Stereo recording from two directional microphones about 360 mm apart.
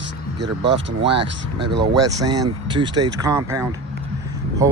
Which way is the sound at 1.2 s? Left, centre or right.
Right.